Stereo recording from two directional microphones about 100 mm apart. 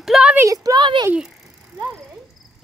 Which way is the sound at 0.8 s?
50° right (ahead or behind).